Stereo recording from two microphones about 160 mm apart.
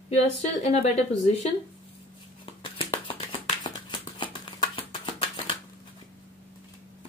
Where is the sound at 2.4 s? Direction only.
30° left (ahead or behind).